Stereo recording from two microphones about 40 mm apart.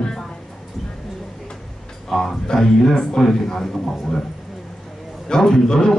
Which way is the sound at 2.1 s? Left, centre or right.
Centre.